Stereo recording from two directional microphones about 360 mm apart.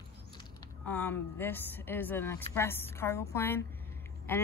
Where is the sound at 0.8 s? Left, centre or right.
Centre.